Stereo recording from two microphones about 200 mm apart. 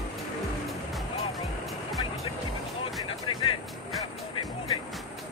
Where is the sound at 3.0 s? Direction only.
25° left (ahead or behind).